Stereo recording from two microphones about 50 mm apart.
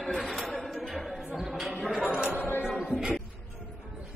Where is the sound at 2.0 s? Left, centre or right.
Right.